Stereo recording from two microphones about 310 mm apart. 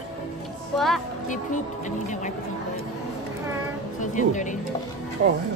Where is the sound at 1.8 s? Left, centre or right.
Left.